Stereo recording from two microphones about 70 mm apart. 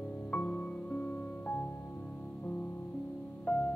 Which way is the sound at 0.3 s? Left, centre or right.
Centre.